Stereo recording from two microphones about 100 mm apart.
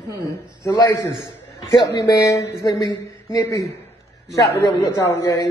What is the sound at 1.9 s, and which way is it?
Speech, 35° left (ahead or behind).